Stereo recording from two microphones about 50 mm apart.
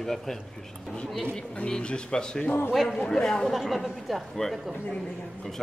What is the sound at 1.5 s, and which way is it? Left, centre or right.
Speech, centre.